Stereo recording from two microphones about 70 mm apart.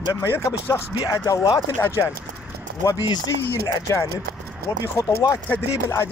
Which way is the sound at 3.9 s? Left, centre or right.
Left.